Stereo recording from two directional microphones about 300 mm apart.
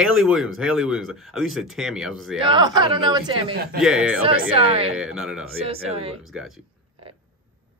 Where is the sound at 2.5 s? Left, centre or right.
Centre.